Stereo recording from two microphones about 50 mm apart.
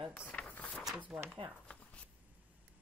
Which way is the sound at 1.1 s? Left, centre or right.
Centre.